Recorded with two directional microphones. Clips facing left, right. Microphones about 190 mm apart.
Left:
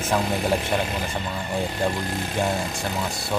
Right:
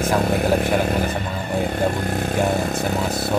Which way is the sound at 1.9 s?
60° right (ahead or behind).